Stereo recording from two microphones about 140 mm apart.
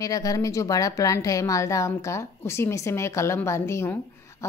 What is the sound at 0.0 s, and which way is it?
Speech, 25° left (ahead or behind).